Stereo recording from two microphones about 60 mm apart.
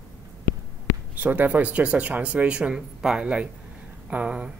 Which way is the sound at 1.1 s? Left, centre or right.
Right.